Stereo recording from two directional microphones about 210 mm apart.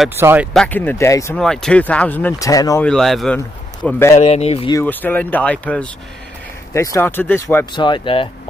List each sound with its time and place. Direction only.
0.2 s speech: 10° right (ahead or behind)
0.5 s speech: 5° left (ahead or behind)
1.4 s speech: 5° left (ahead or behind)
2.8 s speech: 5° left (ahead or behind)
4.2 s speech: 30° left (ahead or behind)
4.7 s speech: 10° left (ahead or behind); by 8.3 s 25° left (ahead or behind)